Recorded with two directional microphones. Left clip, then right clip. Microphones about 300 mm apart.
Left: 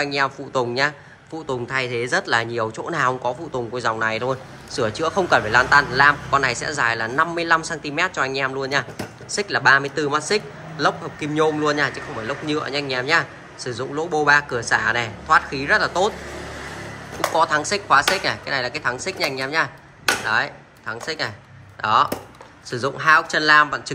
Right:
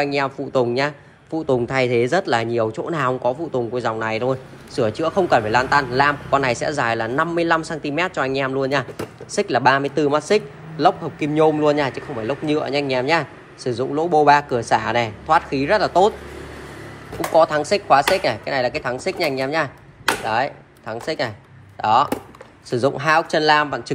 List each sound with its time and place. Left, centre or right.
0.0 s a man's voice: centre
17.3 s a man's voice: centre